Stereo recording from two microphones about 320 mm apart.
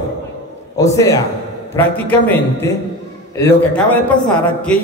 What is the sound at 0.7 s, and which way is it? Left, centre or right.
A man's voice, centre.